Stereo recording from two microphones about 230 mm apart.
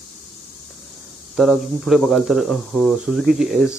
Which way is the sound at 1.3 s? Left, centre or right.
Centre.